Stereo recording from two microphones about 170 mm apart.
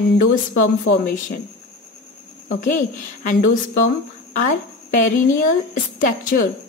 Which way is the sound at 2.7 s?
50° left (ahead or behind).